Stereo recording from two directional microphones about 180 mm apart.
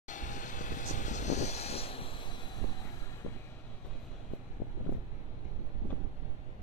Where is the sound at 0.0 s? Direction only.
45° left (ahead or behind); by 2.5 s 25° left (ahead or behind).